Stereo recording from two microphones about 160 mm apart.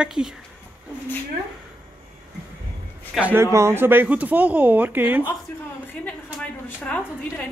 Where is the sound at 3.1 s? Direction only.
10° right (ahead or behind).